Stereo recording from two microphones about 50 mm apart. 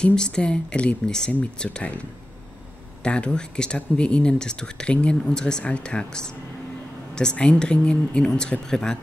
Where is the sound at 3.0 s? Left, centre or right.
Left.